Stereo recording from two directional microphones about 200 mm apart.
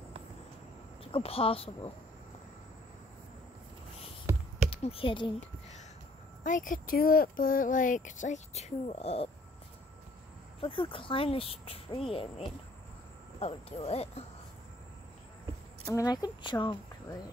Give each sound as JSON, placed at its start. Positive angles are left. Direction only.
{"t": 1.1, "sound": "speech", "side_deg": 30}
{"t": 4.3, "sound": "typing", "side_deg": -15}
{"t": 4.6, "sound": "speech", "side_deg": 25}
{"t": 6.4, "sound": "speech", "side_deg": 40}
{"t": 10.6, "sound": "speech", "side_deg": 25}
{"t": 15.9, "sound": "speech", "side_deg": 15}